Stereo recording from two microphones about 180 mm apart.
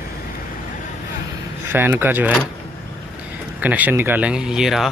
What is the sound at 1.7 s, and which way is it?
Speech, 10° right (ahead or behind).